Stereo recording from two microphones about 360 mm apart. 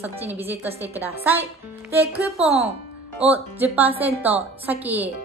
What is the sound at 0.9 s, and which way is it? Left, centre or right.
Speech, centre.